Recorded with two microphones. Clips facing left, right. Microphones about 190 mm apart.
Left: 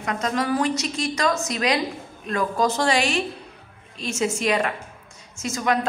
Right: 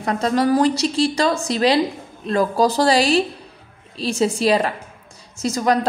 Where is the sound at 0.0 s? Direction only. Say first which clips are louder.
Right 6 dB; 35° right (ahead or behind).